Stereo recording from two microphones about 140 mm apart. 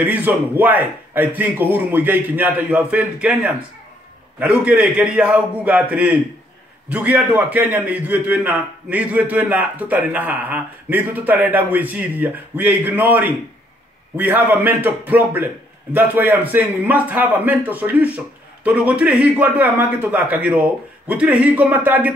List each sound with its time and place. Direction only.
0.0 s a man's voice: 10° right (ahead or behind)